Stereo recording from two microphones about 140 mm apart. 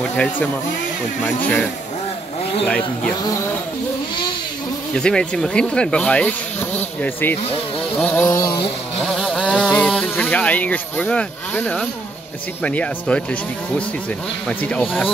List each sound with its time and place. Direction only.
0.1 s speech: 10° left (ahead or behind)
4.9 s speech: 5° left (ahead or behind)
8.3 s a sound: 20° left (ahead or behind)
9.0 s vehicle: centre (ahead or behind)
10.0 s speech: 10° left (ahead or behind)